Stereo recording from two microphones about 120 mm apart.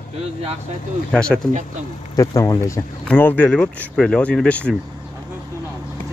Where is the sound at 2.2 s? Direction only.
25° left (ahead or behind).